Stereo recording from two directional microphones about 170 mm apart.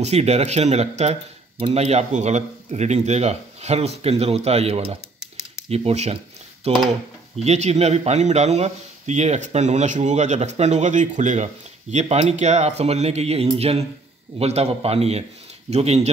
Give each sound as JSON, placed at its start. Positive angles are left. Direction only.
{"t": 0.0, "sound": "speech", "side_deg": -40}